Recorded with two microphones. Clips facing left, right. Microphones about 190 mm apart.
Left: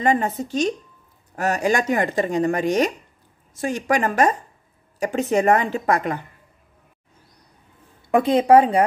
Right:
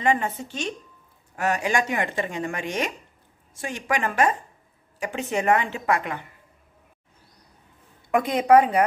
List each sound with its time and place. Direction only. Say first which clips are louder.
0.0 s speech: left 3 dB; 40° left (ahead or behind)
8.1 s a woman's voice: left 3 dB; 30° left (ahead or behind)